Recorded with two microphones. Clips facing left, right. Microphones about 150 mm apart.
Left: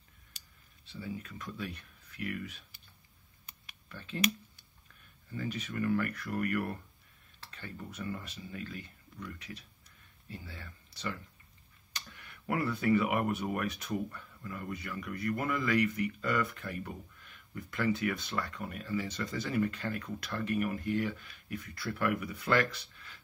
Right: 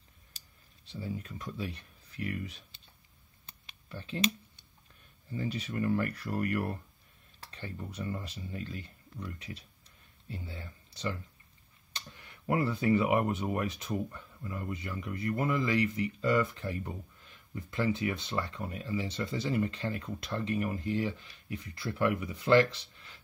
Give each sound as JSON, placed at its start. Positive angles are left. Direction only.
{"t": 0.8, "sound": "speech", "side_deg": -30}
{"t": 3.4, "sound": "a sound", "side_deg": -30}
{"t": 5.3, "sound": "speech", "side_deg": -30}